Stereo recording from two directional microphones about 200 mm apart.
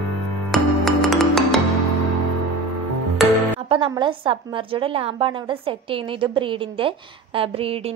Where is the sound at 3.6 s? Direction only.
25° right (ahead or behind).